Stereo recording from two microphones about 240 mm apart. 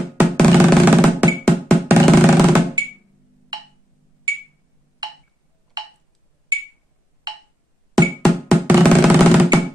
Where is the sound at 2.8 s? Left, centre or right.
Centre.